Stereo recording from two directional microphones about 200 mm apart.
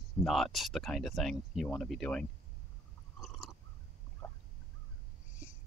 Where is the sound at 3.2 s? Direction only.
Centre (ahead or behind).